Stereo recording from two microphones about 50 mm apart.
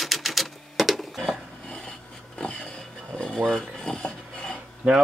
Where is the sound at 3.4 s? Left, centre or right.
Centre.